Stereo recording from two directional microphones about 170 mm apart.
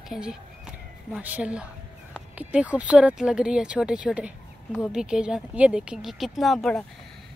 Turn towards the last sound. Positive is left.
turn(degrees=5)  # may be behind; listen again after turning